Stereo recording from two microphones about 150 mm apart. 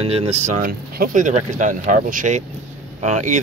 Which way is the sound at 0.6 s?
65° right (ahead or behind).